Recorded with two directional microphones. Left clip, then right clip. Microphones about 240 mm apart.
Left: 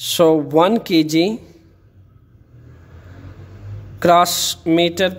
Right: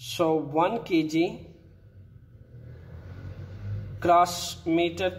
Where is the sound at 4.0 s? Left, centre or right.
Left.